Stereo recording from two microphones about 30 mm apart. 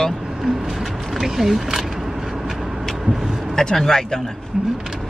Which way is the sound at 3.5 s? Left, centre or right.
Centre.